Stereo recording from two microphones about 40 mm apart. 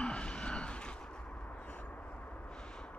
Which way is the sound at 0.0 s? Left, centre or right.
Left.